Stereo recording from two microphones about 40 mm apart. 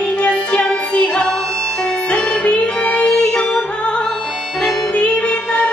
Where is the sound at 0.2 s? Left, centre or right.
Left.